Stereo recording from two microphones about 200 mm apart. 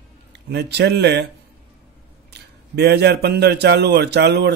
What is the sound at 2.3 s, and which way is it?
Speech, 55° right (ahead or behind).